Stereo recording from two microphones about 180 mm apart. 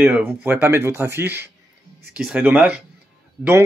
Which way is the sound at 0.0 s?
10° right (ahead or behind).